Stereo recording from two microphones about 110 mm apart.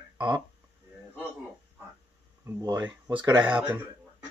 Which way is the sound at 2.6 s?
40° right (ahead or behind).